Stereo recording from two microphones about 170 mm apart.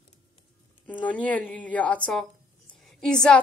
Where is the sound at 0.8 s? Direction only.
10° left (ahead or behind).